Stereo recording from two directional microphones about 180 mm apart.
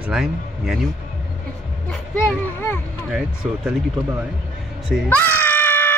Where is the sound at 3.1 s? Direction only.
5° right (ahead or behind).